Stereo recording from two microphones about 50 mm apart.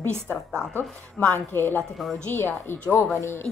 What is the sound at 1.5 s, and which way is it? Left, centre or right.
A woman's voice, left.